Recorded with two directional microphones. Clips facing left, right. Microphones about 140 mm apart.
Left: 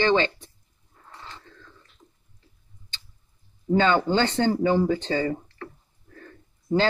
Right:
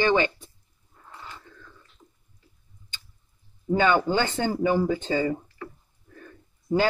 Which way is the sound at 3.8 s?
10° right (ahead or behind).